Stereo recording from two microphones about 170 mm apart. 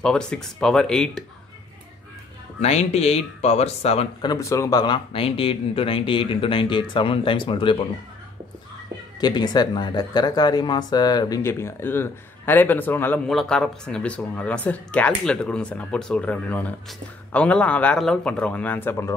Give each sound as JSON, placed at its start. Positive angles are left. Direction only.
{"t": 0.0, "sound": "speech", "side_deg": 5}
{"t": 2.6, "sound": "speech", "side_deg": 40}
{"t": 4.2, "sound": "speech", "side_deg": 20}
{"t": 9.2, "sound": "speech", "side_deg": 25}